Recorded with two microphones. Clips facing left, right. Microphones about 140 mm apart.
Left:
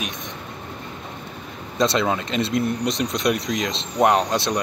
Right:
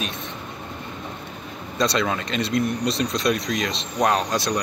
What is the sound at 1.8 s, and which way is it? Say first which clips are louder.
Speech: left 2 dB; 20° left (ahead or behind).